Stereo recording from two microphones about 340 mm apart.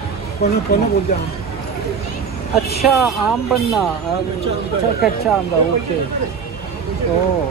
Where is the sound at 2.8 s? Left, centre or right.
Centre.